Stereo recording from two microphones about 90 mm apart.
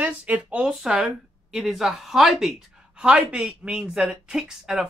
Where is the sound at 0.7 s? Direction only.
5° right (ahead or behind).